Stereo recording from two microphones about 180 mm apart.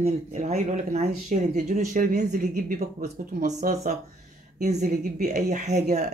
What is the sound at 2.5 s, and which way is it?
Speech, 55° right (ahead or behind).